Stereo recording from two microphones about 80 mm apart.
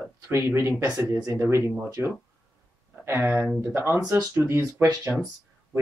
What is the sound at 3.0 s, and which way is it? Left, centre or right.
Speech, right.